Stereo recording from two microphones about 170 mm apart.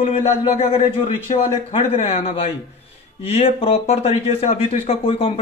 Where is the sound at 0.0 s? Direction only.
35° left (ahead or behind).